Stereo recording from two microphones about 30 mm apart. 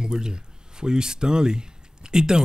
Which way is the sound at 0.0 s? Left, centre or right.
Right.